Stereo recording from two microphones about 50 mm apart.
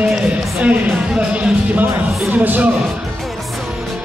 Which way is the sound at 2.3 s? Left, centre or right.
Right.